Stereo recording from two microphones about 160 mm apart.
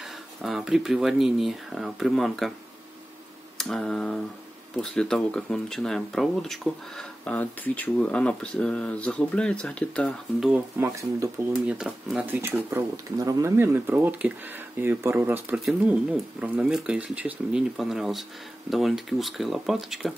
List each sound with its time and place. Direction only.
0.4 s speech: centre (ahead or behind)
3.5 s speech: centre (ahead or behind)
10.5 s speech: 15° right (ahead or behind)
11.6 s speech: 5° right (ahead or behind)